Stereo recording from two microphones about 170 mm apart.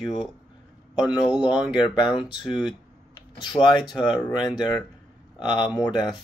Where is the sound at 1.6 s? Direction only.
25° left (ahead or behind).